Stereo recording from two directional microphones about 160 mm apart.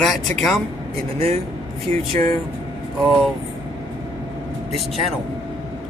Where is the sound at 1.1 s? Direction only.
40° right (ahead or behind).